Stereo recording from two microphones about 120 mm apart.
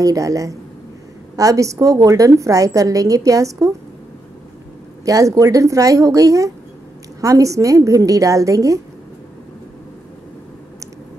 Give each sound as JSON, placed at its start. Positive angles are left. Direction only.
{"t": 0.0, "sound": "a woman's voice", "side_deg": -30}
{"t": 5.0, "sound": "a woman's voice", "side_deg": -30}